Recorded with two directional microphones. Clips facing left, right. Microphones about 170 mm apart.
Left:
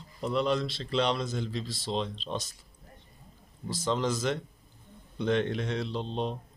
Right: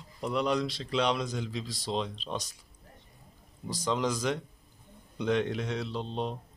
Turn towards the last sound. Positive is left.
turn(degrees=-5)  # may be behind; listen again after turning